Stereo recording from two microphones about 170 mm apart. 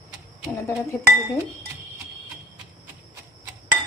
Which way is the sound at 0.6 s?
15° left (ahead or behind).